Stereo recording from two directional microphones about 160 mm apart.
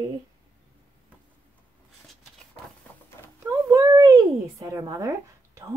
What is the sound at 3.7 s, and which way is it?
Babbling, 20° right (ahead or behind).